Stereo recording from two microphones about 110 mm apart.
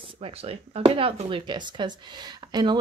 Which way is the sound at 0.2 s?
65° right (ahead or behind).